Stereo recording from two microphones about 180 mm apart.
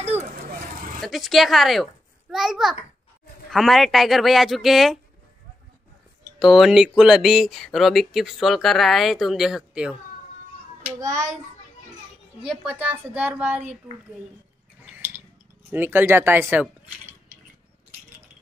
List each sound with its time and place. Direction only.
0.0 s vehicle: 35° right (ahead or behind)
1.0 s speech: centre (ahead or behind)
6.4 s speech: centre (ahead or behind)
11.0 s a child's voice: 20° right (ahead or behind)
12.9 s speech: 10° right (ahead or behind)
14.9 s a sound: 10° right (ahead or behind)
15.7 s speech: 10° right (ahead or behind)